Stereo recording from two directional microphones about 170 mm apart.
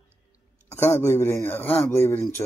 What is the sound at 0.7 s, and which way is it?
Speech, 15° left (ahead or behind).